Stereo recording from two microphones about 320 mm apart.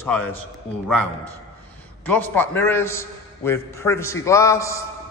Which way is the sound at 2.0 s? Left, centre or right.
Centre.